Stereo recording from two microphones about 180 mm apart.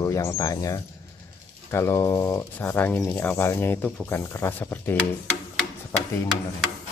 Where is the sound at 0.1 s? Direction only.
15° left (ahead or behind).